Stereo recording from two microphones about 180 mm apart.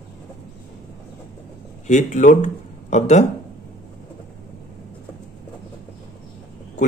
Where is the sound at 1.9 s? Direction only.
45° left (ahead or behind).